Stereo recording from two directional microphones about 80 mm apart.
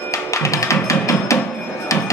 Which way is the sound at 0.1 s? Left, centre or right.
Left.